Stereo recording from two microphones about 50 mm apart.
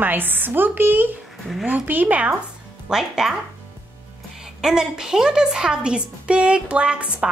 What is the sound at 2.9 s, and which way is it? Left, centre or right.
Speech, centre.